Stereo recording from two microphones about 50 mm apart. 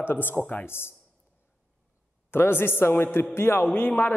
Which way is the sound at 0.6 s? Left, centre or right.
Left.